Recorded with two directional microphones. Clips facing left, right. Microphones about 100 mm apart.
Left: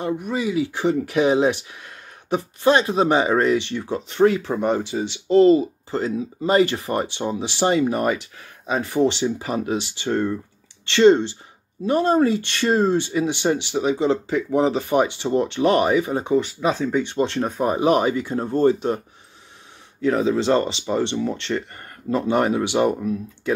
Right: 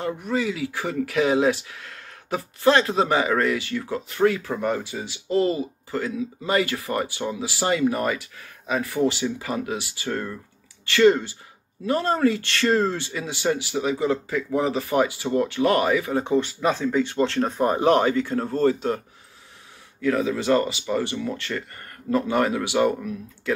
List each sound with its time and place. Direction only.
0.0 s speech: 20° left (ahead or behind)
20.0 s speech: 30° left (ahead or behind)